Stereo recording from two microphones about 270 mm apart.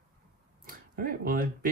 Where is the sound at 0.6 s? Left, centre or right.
Right.